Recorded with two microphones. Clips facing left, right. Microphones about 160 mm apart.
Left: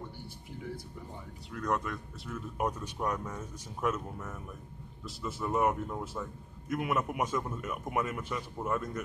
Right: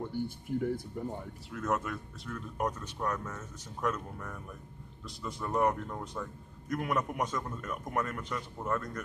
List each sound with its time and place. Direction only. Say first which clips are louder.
0.5 s speech: right 8 dB; 50° right (ahead or behind)
1.5 s speech: even; 5° right (ahead or behind)